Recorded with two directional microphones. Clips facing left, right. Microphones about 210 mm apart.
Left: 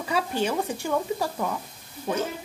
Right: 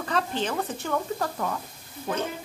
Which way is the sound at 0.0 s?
10° left (ahead or behind).